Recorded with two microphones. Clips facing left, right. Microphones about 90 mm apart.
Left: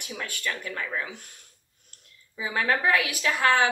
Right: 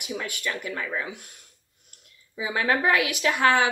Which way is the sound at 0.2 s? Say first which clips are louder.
Left 3 dB; 20° right (ahead or behind).